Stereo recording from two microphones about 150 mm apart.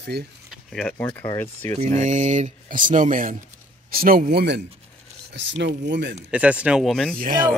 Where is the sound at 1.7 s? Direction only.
50° right (ahead or behind).